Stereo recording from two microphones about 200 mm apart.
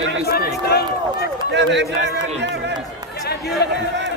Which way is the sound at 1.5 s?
65° right (ahead or behind).